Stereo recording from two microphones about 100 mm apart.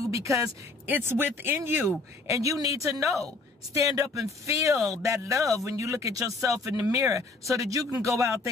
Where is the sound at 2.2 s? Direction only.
35° right (ahead or behind).